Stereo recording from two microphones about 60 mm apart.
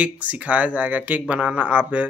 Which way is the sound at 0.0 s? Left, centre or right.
Right.